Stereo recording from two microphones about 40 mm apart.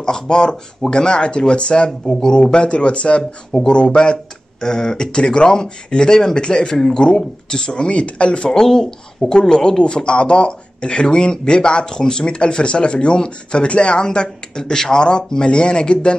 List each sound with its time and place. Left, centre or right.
0.0 s speech: centre
8.5 s speech: centre